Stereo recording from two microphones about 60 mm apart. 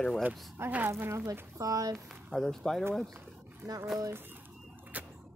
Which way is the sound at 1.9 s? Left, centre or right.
Centre.